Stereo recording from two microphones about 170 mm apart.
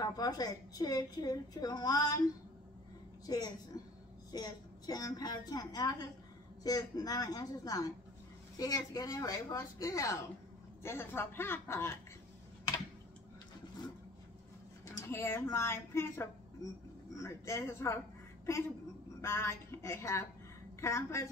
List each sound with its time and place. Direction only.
0.0 s a woman's voice: 20° left (ahead or behind)
3.3 s a woman's voice: 20° left (ahead or behind)
15.0 s a woman's voice: 15° left (ahead or behind)